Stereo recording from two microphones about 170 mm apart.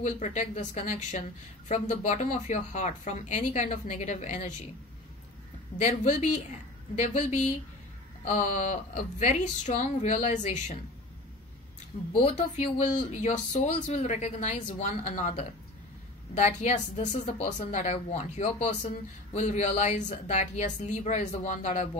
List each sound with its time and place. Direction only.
0.0 s speech: 45° left (ahead or behind)
5.8 s speech: 45° left (ahead or behind)
12.4 s speech: 45° left (ahead or behind)